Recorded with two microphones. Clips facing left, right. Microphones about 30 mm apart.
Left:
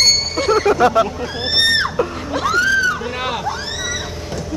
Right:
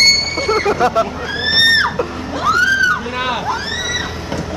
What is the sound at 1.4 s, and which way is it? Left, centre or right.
Music, centre.